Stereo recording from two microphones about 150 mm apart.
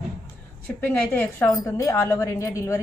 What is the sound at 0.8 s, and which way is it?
A woman's voice, 15° left (ahead or behind).